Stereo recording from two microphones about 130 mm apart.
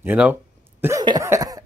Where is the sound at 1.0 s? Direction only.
25° right (ahead or behind).